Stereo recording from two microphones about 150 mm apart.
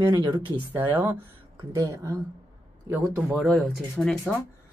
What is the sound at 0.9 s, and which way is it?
A woman's voice, 15° right (ahead or behind).